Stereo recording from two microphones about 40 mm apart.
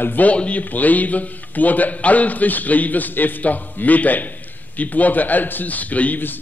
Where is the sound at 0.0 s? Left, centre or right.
Left.